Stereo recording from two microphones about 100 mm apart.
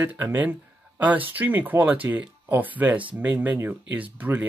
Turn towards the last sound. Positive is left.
turn(degrees=-15)  # may be behind; listen again after turning